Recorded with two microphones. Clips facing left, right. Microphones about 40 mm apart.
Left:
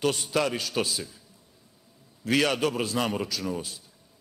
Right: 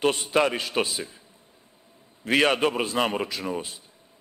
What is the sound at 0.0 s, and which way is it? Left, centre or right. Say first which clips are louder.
A man's voice: right 4 dB; right.